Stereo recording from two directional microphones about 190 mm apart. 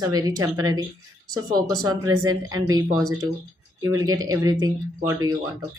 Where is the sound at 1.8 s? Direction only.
20° right (ahead or behind).